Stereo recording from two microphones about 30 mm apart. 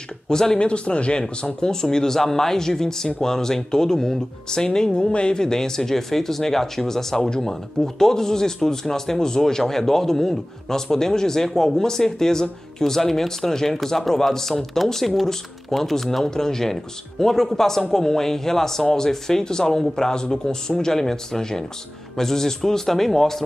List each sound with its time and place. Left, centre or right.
0.3 s speech: centre
0.6 s a man's voice: left
1.4 s speech: left